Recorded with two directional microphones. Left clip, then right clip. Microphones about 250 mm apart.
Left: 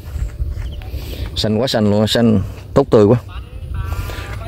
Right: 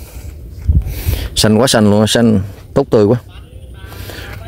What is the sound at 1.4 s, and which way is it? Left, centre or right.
Speech, right.